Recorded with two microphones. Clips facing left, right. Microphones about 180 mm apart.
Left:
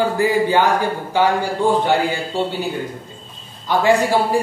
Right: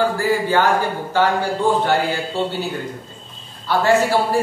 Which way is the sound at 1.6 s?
15° left (ahead or behind).